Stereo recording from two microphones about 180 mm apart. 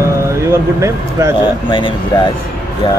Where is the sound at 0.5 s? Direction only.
15° right (ahead or behind).